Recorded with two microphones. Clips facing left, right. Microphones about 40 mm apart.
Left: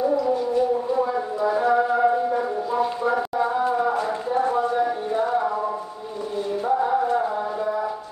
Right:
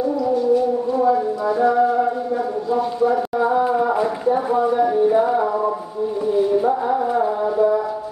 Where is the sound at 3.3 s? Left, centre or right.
Centre.